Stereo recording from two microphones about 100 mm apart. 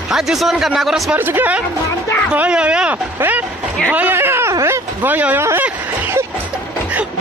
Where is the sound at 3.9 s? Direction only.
20° right (ahead or behind).